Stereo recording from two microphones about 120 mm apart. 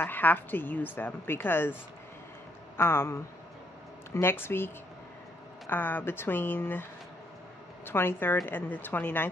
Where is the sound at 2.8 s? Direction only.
20° left (ahead or behind).